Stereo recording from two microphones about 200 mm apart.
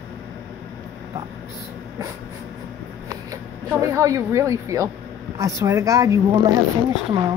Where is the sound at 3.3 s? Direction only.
15° right (ahead or behind).